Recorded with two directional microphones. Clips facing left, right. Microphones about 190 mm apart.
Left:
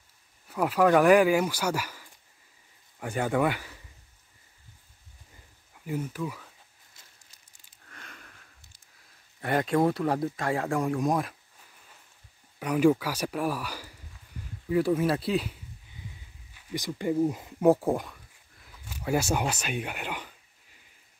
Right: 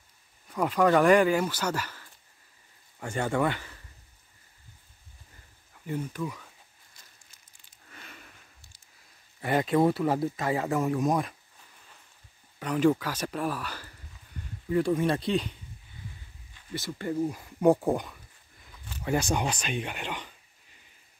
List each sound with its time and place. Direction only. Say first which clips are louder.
0.5 s speech: left 1 dB; 5° left (ahead or behind)
5.9 s speech: even; 5° left (ahead or behind)
7.0 s a sound: even; 25° left (ahead or behind)
7.9 s sniff: even; 5° right (ahead or behind)
9.4 s speech: right 1 dB; 5° right (ahead or behind)
12.5 s speech: left 2 dB; 10° left (ahead or behind)
14.3 s a sound: right 1 dB; 10° left (ahead or behind)
14.7 s speech: left 1 dB; 5° left (ahead or behind)
16.5 s speech: left 2 dB; 15° left (ahead or behind)
17.6 s speech: even; centre (ahead or behind)